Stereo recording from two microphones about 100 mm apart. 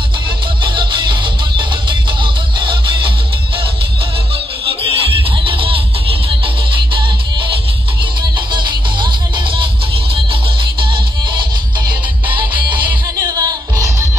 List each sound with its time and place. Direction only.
0.7 s music: 55° right (ahead or behind)
4.8 s music: 70° right (ahead or behind)
12.5 s music: 55° right (ahead or behind)
13.2 s music: 35° right (ahead or behind)